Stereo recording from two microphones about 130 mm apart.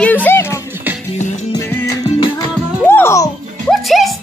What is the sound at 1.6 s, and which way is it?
Music, 25° left (ahead or behind).